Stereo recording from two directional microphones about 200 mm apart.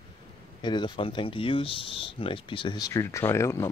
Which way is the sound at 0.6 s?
25° left (ahead or behind).